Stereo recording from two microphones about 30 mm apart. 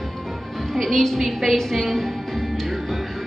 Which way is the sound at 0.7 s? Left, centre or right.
Centre.